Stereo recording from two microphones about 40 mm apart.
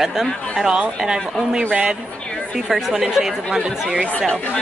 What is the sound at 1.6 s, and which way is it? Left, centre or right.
Speech, right.